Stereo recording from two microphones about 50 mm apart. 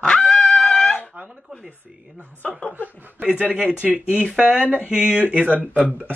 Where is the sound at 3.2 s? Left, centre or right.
Right.